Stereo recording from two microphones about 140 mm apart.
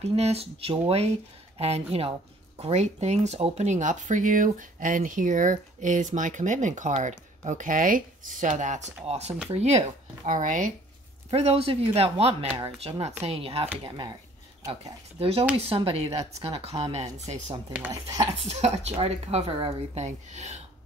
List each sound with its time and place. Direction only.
0.0 s speech: 50° right (ahead or behind); by 10.7 s 65° right (ahead or behind)
11.2 s speech: 45° right (ahead or behind)
15.1 s speech: 45° right (ahead or behind)